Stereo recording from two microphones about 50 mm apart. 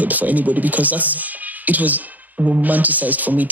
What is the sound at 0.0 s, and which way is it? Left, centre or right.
Speech, right.